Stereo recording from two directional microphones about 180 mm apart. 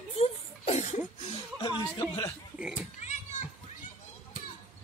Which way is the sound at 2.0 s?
20° left (ahead or behind).